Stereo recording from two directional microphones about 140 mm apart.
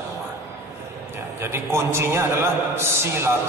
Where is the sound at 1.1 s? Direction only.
20° right (ahead or behind).